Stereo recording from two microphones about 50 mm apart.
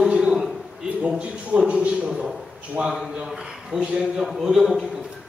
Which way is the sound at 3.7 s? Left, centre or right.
Right.